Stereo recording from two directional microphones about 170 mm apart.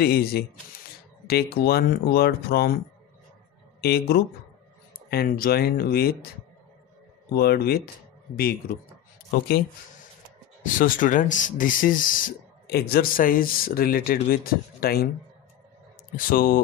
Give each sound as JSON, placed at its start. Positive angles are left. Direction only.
{"t": 0.0, "sound": "speech", "side_deg": 65}
{"t": 3.8, "sound": "speech", "side_deg": 65}
{"t": 7.3, "sound": "speech", "side_deg": 65}
{"t": 9.3, "sound": "speech", "side_deg": 60}
{"t": 10.6, "sound": "speech", "side_deg": 50}
{"t": 16.3, "sound": "speech", "side_deg": 55}